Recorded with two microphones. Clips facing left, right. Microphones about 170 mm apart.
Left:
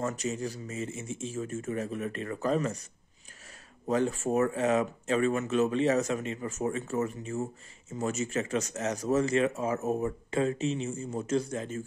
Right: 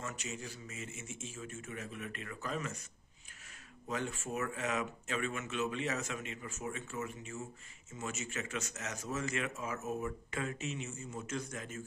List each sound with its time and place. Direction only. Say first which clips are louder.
0.0 s speech: left 11 dB; 40° left (ahead or behind)
3.9 s speech: left 11 dB; 35° left (ahead or behind)